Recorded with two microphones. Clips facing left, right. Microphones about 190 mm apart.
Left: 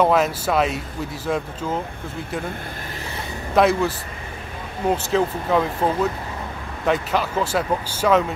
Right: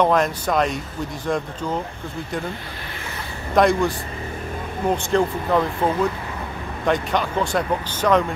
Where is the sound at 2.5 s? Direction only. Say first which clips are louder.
Left 1 dB; 40° left (ahead or behind).